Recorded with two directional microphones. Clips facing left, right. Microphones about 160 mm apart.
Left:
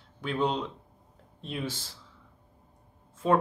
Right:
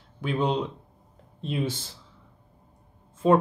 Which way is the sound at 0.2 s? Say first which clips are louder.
Right 3 dB; 15° right (ahead or behind).